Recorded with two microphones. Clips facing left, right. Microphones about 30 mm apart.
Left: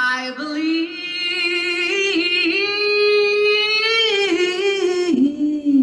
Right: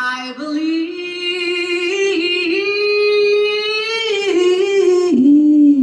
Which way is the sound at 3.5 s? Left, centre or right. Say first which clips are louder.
Left 1 dB; left.